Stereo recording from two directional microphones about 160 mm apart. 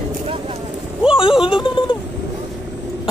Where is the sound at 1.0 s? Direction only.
5° right (ahead or behind).